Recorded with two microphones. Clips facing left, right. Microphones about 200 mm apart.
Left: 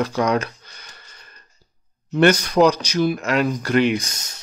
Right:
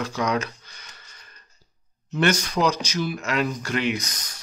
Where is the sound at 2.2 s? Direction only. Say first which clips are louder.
Left 7 dB; 60° left (ahead or behind).